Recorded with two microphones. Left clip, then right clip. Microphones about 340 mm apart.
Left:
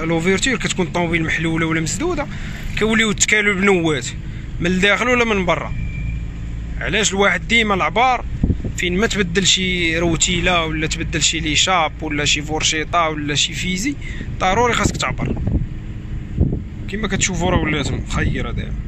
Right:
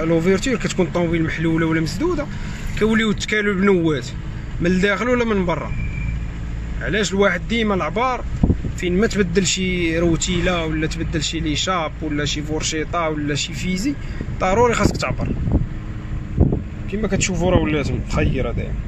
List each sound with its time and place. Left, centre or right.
0.0 s speech: centre
6.8 s speech: centre
8.4 s a sound: right
8.7 s speech: centre
16.4 s a sound: right
16.9 s speech: centre